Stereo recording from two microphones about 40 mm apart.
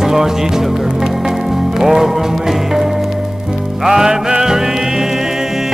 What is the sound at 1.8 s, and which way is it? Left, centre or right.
Music, centre.